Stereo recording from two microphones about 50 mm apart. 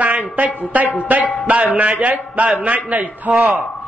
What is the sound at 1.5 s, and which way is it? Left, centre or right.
A man's voice, right.